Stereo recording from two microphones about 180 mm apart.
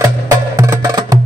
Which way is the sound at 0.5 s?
20° right (ahead or behind).